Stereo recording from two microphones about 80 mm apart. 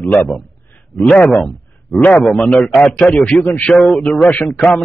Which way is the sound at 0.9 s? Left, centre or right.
Centre.